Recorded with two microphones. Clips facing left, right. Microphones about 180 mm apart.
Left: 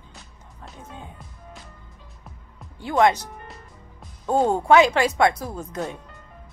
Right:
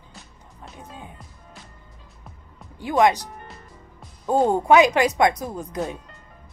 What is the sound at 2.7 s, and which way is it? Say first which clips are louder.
Speech: even; 15° right (ahead or behind).